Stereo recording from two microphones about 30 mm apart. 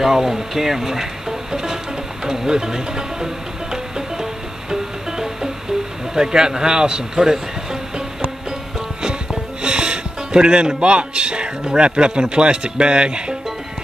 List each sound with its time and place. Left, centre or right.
0.0 s speech: centre
1.5 s music: right
2.2 s speech: centre
3.7 s music: centre
6.1 s speech: right
9.6 s speech: right